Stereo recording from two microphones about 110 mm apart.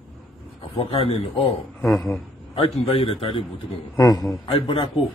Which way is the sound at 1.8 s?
5° left (ahead or behind).